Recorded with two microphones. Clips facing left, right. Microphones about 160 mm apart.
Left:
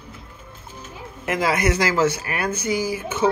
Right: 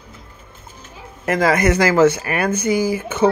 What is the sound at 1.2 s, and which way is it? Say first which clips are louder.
Speech: right 5 dB; 45° right (ahead or behind).